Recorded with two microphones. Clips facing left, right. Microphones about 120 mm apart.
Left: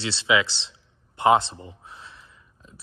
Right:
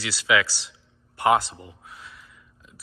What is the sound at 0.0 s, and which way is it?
A man's voice, 25° left (ahead or behind).